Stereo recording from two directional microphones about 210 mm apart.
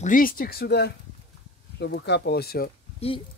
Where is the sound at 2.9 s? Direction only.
25° left (ahead or behind).